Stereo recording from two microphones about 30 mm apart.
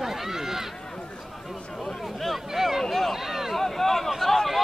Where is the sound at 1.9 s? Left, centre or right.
Centre.